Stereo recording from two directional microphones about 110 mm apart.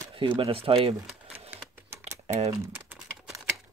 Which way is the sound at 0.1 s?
50° right (ahead or behind).